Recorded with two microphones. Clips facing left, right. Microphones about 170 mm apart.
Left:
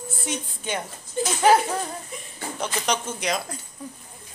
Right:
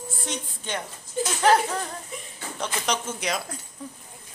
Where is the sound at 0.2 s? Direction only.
5° left (ahead or behind).